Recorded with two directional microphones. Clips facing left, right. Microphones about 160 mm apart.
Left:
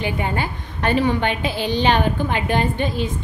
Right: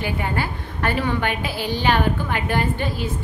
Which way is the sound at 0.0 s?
20° left (ahead or behind).